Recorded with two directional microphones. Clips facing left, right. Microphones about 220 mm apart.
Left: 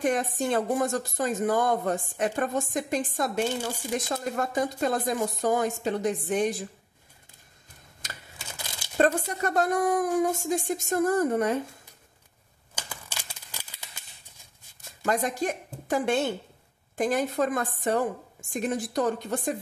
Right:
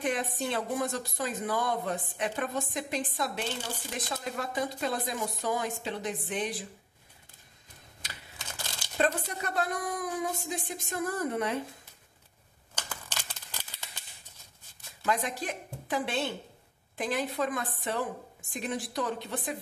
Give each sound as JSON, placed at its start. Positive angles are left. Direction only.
{"t": 0.0, "sound": "speech", "side_deg": 45}
{"t": 8.4, "sound": "crumpling", "side_deg": 10}
{"t": 8.9, "sound": "speech", "side_deg": 45}
{"t": 12.7, "sound": "a sound", "side_deg": 10}
{"t": 15.0, "sound": "speech", "side_deg": 45}